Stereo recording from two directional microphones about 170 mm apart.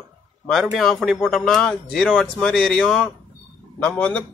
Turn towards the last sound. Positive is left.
turn(degrees=5)  # may be behind; listen again after turning